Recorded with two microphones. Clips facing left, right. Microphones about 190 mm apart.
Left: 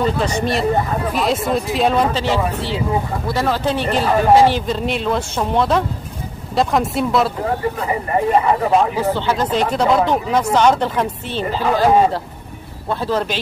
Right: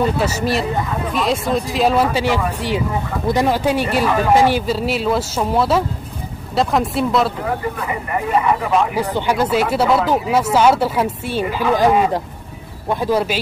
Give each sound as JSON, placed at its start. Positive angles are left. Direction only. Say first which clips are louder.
{"t": 0.2, "sound": "speech", "louder": "left 1 dB", "side_deg": -5}
{"t": 7.8, "sound": "speech", "louder": "left 4 dB", "side_deg": 35}
{"t": 8.9, "sound": "speech", "louder": "even", "side_deg": -15}